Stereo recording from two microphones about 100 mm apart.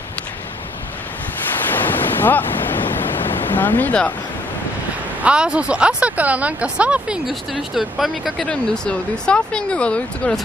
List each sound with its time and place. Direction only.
1.6 s ocean: 20° left (ahead or behind)
5.2 s speech: 10° right (ahead or behind); by 10.4 s 10° left (ahead or behind)